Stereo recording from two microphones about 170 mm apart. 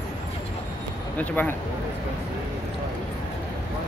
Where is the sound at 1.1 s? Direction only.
10° left (ahead or behind).